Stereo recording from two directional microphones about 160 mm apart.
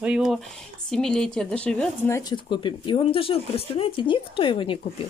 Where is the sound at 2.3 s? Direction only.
30° left (ahead or behind).